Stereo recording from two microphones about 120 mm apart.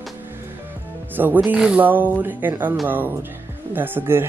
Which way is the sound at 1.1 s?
15° right (ahead or behind).